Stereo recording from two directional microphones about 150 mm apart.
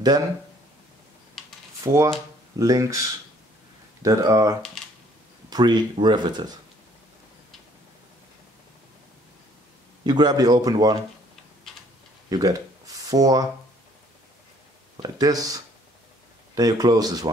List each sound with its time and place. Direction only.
1.4 s typing: centre (ahead or behind)
1.8 s speech: 20° right (ahead or behind)
4.0 s speech: 20° right (ahead or behind)
10.0 s speech: 30° right (ahead or behind)
12.3 s a sound: 25° right (ahead or behind)
15.0 s speech: 25° right (ahead or behind)